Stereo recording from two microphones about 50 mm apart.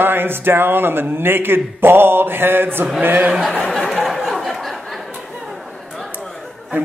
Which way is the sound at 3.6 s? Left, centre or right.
Centre.